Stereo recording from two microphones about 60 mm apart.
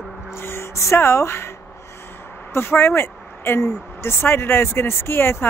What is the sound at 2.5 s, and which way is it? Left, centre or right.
Speech, left.